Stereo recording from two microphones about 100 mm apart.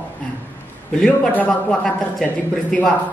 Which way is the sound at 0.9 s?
5° left (ahead or behind).